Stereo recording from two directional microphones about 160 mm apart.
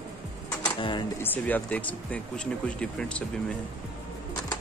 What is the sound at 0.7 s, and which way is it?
Speech, 30° left (ahead or behind).